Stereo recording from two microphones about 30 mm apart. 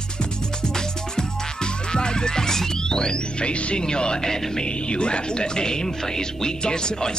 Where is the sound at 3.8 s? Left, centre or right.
Left.